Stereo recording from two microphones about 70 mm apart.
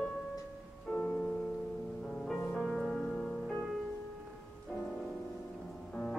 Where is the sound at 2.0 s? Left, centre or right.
Centre.